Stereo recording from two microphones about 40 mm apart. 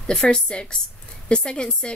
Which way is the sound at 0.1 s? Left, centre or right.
Left.